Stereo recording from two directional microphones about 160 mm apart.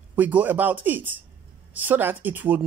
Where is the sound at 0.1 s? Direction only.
10° right (ahead or behind).